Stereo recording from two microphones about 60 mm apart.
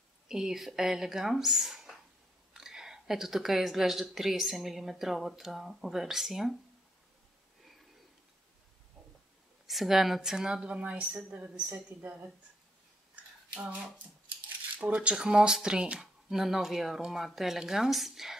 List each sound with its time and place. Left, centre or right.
0.3 s speech: centre
9.7 s a woman's voice: centre; by 12.3 s right
13.1 s a sound: right
14.8 s a woman's voice: centre